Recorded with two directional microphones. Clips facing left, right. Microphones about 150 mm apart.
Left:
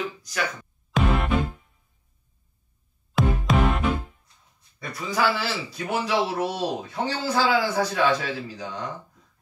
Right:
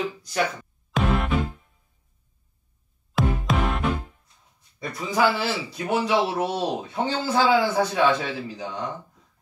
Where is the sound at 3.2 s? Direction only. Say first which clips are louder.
Left 2 dB; centre (ahead or behind).